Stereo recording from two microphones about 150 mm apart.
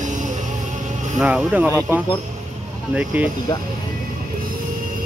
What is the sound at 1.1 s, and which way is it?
Speech, 10° right (ahead or behind).